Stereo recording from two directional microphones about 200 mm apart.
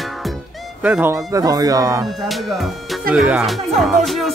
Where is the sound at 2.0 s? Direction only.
Centre (ahead or behind).